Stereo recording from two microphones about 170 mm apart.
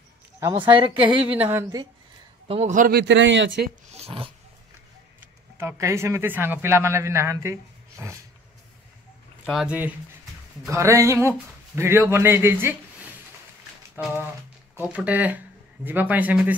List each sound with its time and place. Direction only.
0.4 s speech: 25° right (ahead or behind)
1.0 s speech: 10° right (ahead or behind)
2.4 s a man's voice: 35° right (ahead or behind)
2.7 s a man's voice: 50° right (ahead or behind)
3.0 s a man's voice: 90° right
3.9 s roaring cats: 35° right (ahead or behind)
5.6 s speech: 15° right (ahead or behind)
9.5 s speech: 5° right (ahead or behind)